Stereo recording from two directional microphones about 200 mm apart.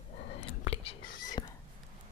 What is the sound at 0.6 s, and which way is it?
Whispering, 30° left (ahead or behind).